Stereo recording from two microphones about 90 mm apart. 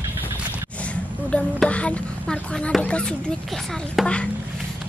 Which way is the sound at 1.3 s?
15° left (ahead or behind).